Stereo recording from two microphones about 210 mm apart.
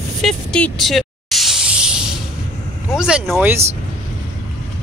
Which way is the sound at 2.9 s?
5° right (ahead or behind).